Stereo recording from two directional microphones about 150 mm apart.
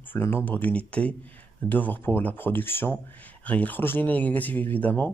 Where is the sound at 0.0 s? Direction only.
15° left (ahead or behind).